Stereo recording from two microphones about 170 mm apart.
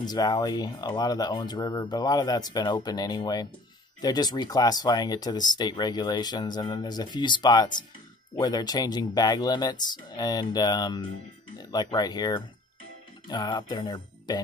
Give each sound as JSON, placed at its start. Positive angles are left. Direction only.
{"t": 0.0, "sound": "speech", "side_deg": 25}